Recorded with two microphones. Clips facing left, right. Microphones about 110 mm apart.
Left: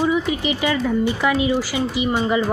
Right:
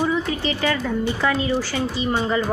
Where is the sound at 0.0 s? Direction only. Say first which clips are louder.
Left 2 dB; 15° left (ahead or behind).